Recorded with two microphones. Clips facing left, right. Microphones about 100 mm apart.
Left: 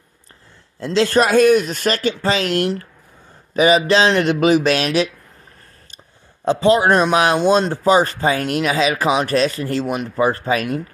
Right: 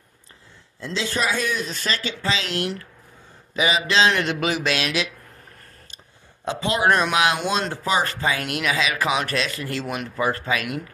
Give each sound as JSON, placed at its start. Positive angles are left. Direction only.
{"t": 0.7, "sound": "a man's voice", "side_deg": 65}
{"t": 6.4, "sound": "a man's voice", "side_deg": 35}